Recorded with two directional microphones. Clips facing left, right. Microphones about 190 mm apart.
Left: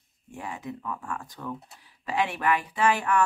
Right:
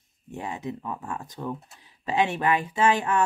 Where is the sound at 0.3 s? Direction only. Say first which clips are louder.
Right 3 dB; 20° right (ahead or behind).